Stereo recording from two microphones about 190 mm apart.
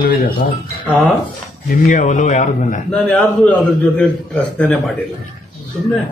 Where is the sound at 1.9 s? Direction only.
40° left (ahead or behind).